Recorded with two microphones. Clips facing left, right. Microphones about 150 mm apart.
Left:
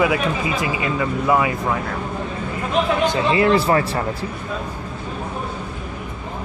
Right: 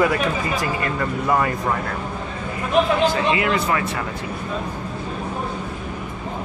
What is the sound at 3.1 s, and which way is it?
Speech, 30° left (ahead or behind).